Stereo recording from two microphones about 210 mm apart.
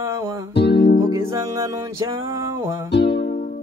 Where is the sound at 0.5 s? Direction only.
50° left (ahead or behind).